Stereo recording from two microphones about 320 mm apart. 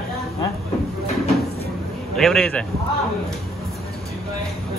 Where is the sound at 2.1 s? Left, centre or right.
Centre.